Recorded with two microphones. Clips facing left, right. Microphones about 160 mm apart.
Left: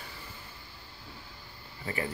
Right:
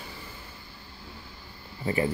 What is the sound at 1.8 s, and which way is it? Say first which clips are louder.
Speech: right 8 dB; 25° right (ahead or behind).